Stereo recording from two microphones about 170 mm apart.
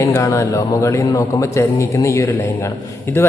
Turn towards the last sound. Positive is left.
turn(degrees=15)  # may be behind; listen again after turning